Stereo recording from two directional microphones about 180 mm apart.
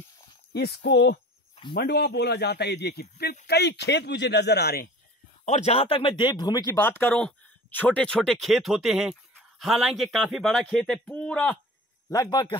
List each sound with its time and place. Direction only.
0.5 s a man's voice: 60° left (ahead or behind)
5.4 s speech: 40° left (ahead or behind); by 11.5 s 5° left (ahead or behind)
12.1 s a man's voice: 20° left (ahead or behind)